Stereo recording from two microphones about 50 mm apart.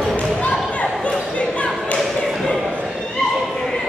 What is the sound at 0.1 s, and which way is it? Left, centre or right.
Basketball bounce, left.